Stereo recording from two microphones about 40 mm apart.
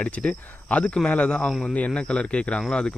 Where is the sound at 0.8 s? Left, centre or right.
Left.